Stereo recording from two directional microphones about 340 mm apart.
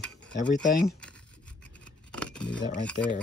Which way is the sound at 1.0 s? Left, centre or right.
Centre.